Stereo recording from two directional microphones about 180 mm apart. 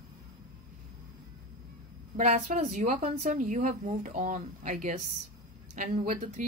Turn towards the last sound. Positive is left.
turn(degrees=-40)  # may be behind; listen again after turning